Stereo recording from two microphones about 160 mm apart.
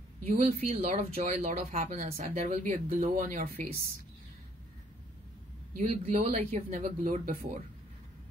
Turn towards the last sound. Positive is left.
turn(degrees=-60)  # may be behind; listen again after turning